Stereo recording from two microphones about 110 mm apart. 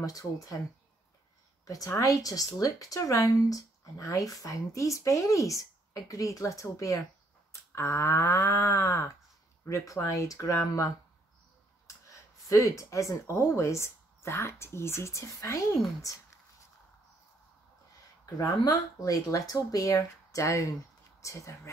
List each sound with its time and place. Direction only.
0.0 s speech: 30° left (ahead or behind)
1.7 s speech: 30° left (ahead or behind)
12.1 s speech: 30° left (ahead or behind)
18.2 s speech: 35° left (ahead or behind)